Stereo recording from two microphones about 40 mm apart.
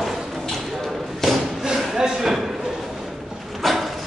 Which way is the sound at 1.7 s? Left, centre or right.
Centre.